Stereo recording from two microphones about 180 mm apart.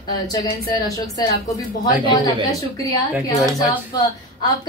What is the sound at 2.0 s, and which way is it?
Speech, 30° left (ahead or behind).